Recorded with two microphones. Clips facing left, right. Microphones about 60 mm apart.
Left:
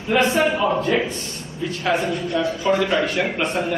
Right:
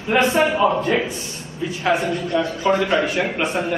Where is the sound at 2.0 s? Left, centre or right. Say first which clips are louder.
Right 1 dB; right.